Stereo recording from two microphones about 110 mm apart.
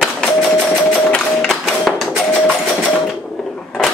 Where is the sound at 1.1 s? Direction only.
5° left (ahead or behind).